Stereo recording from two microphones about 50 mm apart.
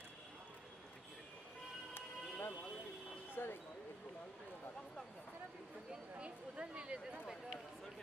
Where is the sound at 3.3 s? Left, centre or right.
Left.